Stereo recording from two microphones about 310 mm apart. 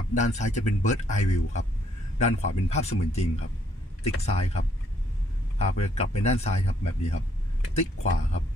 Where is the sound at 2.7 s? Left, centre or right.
Left.